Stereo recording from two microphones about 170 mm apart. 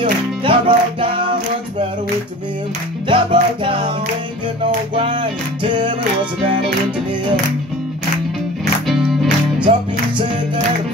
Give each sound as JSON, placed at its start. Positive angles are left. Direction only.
{"t": 0.0, "sound": "music", "side_deg": -30}
{"t": 3.1, "sound": "music", "side_deg": -30}
{"t": 4.9, "sound": "music", "side_deg": -30}
{"t": 8.8, "sound": "music", "side_deg": 0}